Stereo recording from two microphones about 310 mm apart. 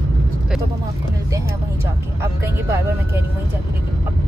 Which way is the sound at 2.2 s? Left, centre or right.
Centre.